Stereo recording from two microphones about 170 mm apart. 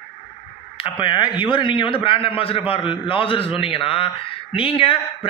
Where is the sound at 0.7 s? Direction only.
30° left (ahead or behind).